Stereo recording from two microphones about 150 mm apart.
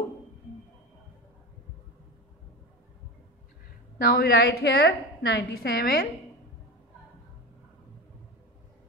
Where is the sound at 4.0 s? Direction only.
90° left.